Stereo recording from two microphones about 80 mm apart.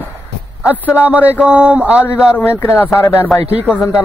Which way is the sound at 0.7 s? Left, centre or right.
Centre.